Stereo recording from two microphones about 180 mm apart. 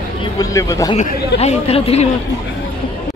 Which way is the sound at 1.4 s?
35° left (ahead or behind).